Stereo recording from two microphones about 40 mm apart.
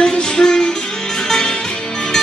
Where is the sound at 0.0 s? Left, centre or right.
Centre.